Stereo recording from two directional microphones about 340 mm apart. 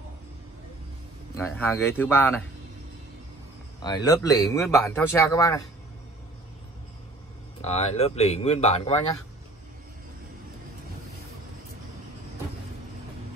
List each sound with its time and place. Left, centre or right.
1.3 s speech: centre
3.8 s speech: centre
7.6 s speech: centre